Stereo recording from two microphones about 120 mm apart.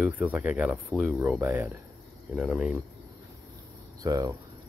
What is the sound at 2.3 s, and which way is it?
Speech, 5° right (ahead or behind).